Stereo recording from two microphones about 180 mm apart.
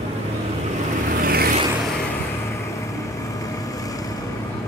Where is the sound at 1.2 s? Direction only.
55° right (ahead or behind).